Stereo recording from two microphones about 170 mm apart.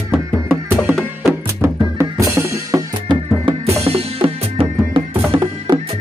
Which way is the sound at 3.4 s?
35° right (ahead or behind).